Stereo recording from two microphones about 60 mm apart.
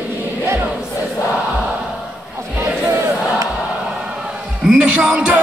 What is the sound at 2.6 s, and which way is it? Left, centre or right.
Crowd, right.